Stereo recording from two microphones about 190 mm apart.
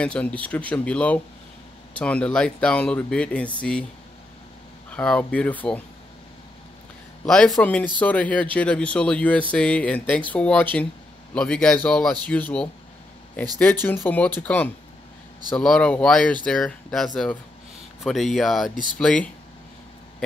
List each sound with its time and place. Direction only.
0.0 s speech: 5° left (ahead or behind)
4.9 s speech: 5° left (ahead or behind)
7.2 s speech: centre (ahead or behind)
13.8 s speech: 10° left (ahead or behind)